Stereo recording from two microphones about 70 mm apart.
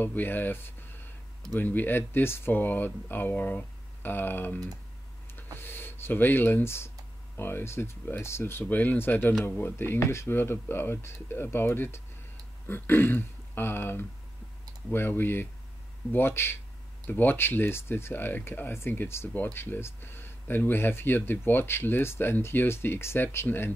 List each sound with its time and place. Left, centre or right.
0.0 s speech: left
5.6 s speech: left